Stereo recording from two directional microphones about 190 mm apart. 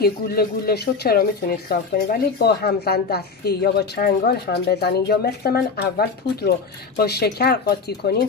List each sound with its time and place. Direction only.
0.0 s a woman's voice: 55° left (ahead or behind)